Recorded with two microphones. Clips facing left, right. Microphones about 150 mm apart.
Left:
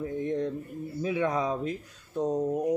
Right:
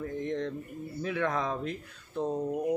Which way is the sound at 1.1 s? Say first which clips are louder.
Left 3 dB; 15° left (ahead or behind).